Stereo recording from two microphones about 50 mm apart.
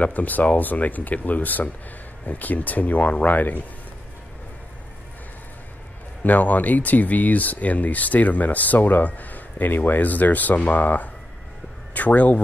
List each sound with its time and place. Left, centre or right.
0.0 s speech: left
6.2 s speech: left